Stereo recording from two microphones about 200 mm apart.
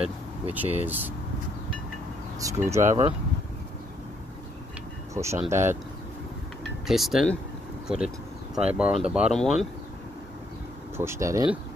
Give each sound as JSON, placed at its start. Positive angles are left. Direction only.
{"t": 0.0, "sound": "speech", "side_deg": -10}
{"t": 2.4, "sound": "speech", "side_deg": -15}
{"t": 2.8, "sound": "speech", "side_deg": -30}
{"t": 5.1, "sound": "speech", "side_deg": -15}
{"t": 6.9, "sound": "speech", "side_deg": 0}
{"t": 8.7, "sound": "speech", "side_deg": -5}
{"t": 11.0, "sound": "speech", "side_deg": -15}